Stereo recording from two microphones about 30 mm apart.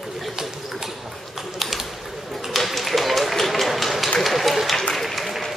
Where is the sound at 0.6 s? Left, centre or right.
Centre.